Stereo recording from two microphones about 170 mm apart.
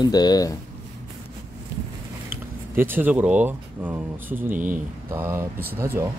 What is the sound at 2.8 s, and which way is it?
Speech, 10° right (ahead or behind).